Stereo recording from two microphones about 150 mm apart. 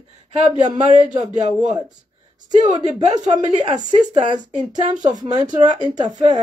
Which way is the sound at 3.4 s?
40° right (ahead or behind).